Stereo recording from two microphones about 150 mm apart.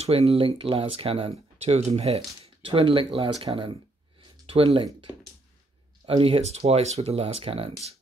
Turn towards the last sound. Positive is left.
turn(degrees=-40)  # may be behind; listen again after turning